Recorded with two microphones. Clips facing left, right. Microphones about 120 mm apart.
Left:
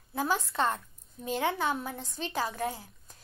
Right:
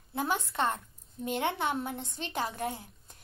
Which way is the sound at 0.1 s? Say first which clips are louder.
Left 1 dB; 25° right (ahead or behind).